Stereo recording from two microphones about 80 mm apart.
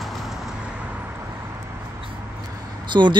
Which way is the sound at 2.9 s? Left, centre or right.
Right.